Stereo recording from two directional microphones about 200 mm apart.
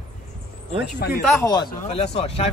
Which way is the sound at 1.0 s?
50° left (ahead or behind).